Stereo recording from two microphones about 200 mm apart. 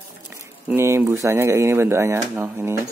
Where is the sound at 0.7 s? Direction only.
10° right (ahead or behind).